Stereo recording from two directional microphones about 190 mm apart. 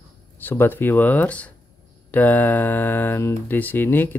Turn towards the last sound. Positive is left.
turn(degrees=10)  # may be behind; listen again after turning